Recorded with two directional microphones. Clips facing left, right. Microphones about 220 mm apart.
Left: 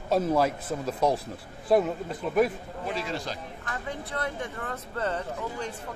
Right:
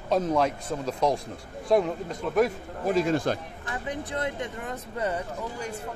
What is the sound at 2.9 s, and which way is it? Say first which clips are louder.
Speech: right 9 dB; 45° right (ahead or behind).